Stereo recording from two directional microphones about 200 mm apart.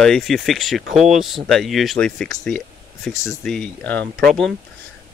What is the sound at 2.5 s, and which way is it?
Air conditioning, 5° left (ahead or behind).